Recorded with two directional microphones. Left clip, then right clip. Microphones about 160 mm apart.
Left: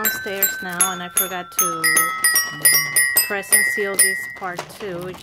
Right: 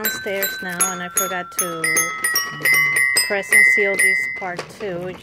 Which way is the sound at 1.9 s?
5° right (ahead or behind).